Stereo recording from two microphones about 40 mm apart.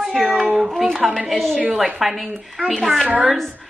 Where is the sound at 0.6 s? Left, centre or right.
Centre.